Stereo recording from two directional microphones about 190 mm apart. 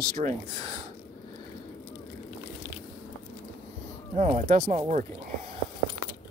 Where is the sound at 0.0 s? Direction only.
45° right (ahead or behind).